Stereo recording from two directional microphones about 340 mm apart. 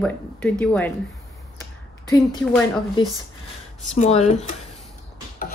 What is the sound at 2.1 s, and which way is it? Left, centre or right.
Speech, centre.